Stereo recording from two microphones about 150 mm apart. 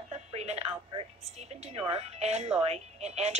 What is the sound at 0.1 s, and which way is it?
Telephone, 45° right (ahead or behind).